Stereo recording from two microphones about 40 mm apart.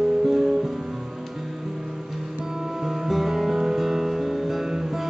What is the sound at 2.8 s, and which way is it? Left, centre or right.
Music, centre.